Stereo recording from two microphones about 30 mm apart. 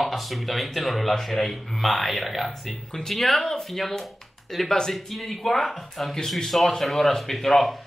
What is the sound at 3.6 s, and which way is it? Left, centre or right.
Speech, centre.